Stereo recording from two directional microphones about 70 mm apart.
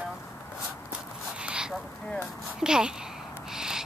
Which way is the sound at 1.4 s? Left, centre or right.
Centre.